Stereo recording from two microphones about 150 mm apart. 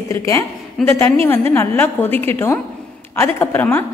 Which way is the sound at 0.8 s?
Centre (ahead or behind).